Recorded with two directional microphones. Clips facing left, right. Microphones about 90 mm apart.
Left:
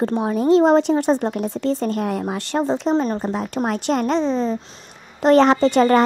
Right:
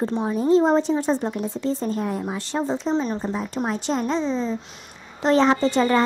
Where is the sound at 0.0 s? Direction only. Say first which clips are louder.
Left 3 dB; 60° left (ahead or behind).